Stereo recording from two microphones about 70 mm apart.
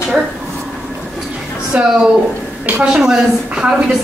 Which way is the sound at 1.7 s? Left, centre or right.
Centre.